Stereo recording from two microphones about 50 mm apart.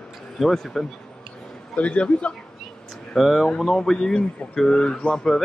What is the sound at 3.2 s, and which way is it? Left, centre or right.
Speech, centre.